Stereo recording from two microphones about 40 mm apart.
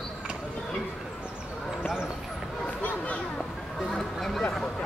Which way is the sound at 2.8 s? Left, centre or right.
Left.